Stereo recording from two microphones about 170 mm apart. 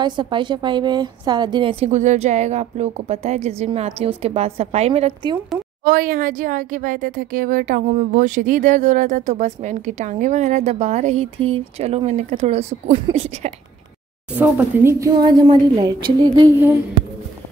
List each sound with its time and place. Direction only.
0.0 s a woman's voice: 30° right (ahead or behind)
1.9 s a woman's voice: 45° right (ahead or behind)
5.9 s a woman's voice: 55° right (ahead or behind); by 13.5 s 40° right (ahead or behind)
14.3 s a woman's voice: 10° right (ahead or behind)